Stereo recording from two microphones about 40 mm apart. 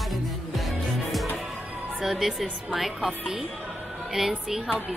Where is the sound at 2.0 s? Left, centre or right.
Centre.